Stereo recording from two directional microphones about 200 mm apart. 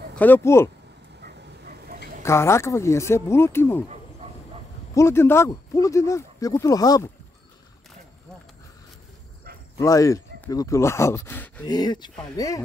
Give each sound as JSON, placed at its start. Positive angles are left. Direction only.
{"t": 0.1, "sound": "speech", "side_deg": 10}
{"t": 1.2, "sound": "a sound", "side_deg": -50}
{"t": 2.2, "sound": "speech", "side_deg": 15}
{"t": 4.9, "sound": "speech", "side_deg": 15}
{"t": 9.8, "sound": "speech", "side_deg": 15}
{"t": 11.6, "sound": "speech", "side_deg": 20}